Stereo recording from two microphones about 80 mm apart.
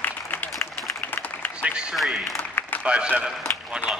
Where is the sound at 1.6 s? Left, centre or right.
Centre.